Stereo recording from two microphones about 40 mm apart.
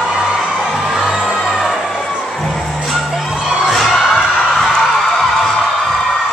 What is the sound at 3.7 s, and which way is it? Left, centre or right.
Crowd, centre.